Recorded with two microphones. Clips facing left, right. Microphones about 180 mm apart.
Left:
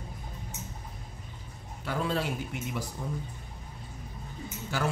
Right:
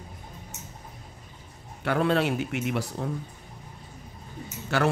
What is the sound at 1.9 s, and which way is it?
Speech, 65° right (ahead or behind).